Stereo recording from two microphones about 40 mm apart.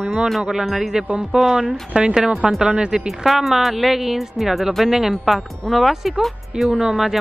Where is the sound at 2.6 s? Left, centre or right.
Right.